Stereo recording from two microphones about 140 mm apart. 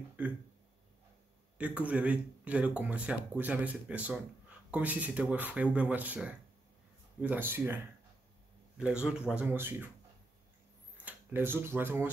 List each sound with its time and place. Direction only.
0.2 s speech: 10° right (ahead or behind)
1.6 s speech: 10° right (ahead or behind)
11.1 s speech: 15° right (ahead or behind)